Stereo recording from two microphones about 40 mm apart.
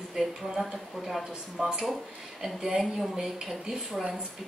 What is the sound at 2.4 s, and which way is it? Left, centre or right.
A woman's voice, centre.